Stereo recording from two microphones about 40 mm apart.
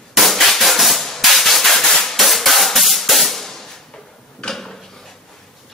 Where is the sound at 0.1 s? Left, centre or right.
Centre.